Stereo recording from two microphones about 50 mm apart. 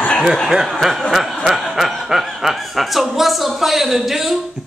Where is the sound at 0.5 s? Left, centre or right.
Centre.